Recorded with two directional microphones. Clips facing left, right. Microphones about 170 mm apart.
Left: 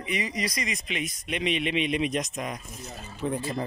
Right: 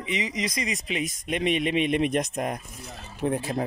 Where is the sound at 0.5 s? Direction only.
35° right (ahead or behind).